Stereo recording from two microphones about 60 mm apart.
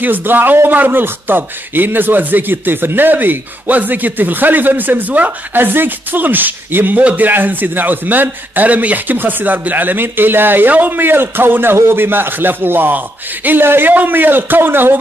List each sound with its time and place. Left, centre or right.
0.0 s a man's voice: right